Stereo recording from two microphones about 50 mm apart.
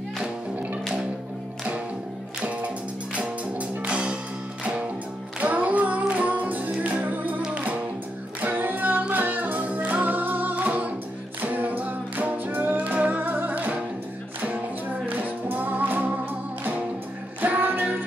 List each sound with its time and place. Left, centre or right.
3.2 s music: right
5.4 s singing: right
7.5 s music: right
15.0 s music: right
17.4 s music: right